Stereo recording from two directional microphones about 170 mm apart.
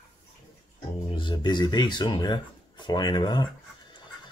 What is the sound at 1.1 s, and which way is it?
Speech, 30° left (ahead or behind).